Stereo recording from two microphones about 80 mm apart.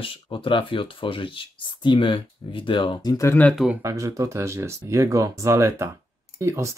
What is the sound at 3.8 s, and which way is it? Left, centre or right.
Speech, right.